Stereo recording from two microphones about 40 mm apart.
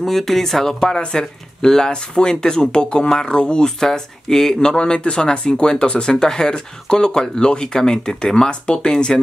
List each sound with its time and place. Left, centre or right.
0.0 s speech: centre
3.8 s speech: centre